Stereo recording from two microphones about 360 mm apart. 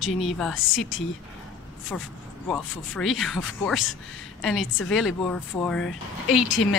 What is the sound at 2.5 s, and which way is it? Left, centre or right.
A woman's voice, centre.